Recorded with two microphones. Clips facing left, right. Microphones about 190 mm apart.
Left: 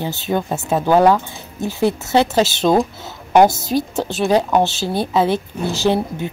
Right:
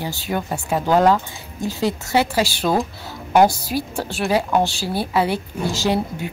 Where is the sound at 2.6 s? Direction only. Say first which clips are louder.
Left 5 dB; 10° left (ahead or behind).